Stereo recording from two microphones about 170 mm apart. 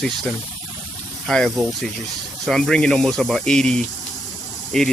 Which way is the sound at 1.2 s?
5° left (ahead or behind).